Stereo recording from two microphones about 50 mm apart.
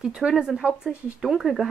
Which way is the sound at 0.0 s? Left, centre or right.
Centre.